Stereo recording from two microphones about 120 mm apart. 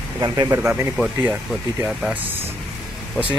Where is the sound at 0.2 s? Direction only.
35° right (ahead or behind).